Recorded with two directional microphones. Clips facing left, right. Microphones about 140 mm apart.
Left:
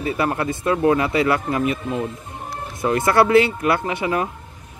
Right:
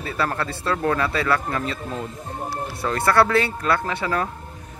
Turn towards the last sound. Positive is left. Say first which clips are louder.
# left 2 dB
turn(degrees=15)  # may be behind; listen again after turning